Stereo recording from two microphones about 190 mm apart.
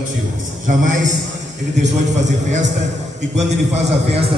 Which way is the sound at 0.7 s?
40° right (ahead or behind).